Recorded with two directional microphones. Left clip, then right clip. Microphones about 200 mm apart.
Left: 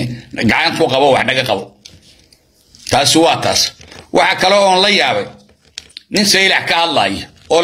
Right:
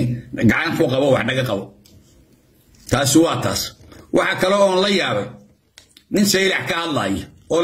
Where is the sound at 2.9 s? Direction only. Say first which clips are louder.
Left 6 dB; 20° right (ahead or behind).